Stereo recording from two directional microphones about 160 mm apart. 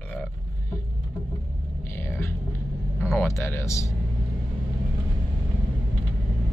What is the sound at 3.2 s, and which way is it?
Speech, 15° left (ahead or behind).